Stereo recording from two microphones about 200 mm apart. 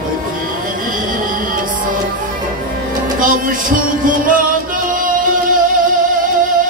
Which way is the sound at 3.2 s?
45° right (ahead or behind).